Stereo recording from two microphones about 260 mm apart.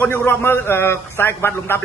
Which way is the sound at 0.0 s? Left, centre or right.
Centre.